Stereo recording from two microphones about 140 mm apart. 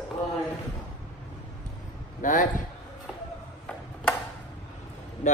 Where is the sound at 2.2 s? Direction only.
65° left (ahead or behind).